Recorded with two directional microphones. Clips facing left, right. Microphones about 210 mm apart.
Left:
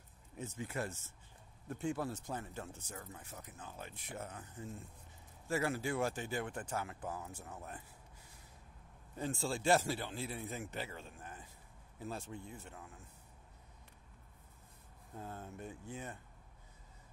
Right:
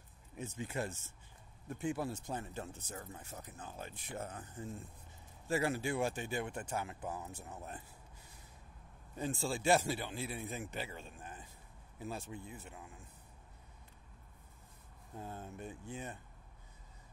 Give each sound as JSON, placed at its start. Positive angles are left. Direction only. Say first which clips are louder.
{"t": 0.4, "sound": "speech", "louder": "right 1 dB", "side_deg": -20}
{"t": 1.7, "sound": "speech", "louder": "right 1 dB", "side_deg": -5}
{"t": 2.3, "sound": "speech", "louder": "right 2 dB", "side_deg": -20}
{"t": 9.1, "sound": "speech", "louder": "right 1 dB", "side_deg": -15}
{"t": 12.0, "sound": "speech", "louder": "right 1 dB", "side_deg": -10}
{"t": 15.1, "sound": "speech", "louder": "right 1 dB", "side_deg": -15}